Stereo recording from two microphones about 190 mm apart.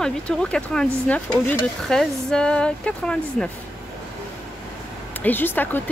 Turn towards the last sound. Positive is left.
turn(degrees=10)  # may be behind; listen again after turning